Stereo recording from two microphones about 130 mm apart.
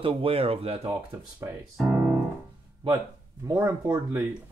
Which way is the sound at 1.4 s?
20° right (ahead or behind).